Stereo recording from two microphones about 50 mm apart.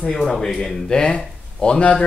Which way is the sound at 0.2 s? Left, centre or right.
Centre.